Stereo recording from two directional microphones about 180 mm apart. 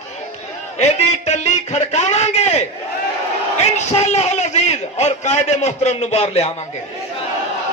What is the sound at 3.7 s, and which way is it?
A man's voice, 40° left (ahead or behind).